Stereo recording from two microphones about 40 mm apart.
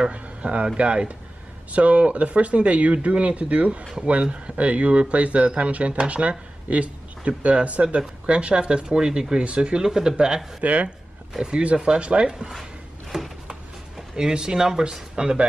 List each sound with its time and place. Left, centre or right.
0.1 s a sound: right
0.7 s speech: right
10.6 s speech: right
11.7 s speech: right
13.1 s a sound: centre
14.1 s speech: centre